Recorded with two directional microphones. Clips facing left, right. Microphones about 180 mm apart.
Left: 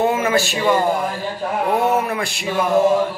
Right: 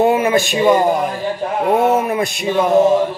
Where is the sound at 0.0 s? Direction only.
15° right (ahead or behind).